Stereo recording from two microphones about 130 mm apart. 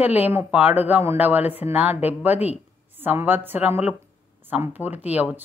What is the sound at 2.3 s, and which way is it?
Speech, 55° left (ahead or behind).